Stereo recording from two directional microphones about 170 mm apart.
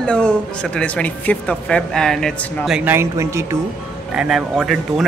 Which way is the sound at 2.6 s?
5° right (ahead or behind).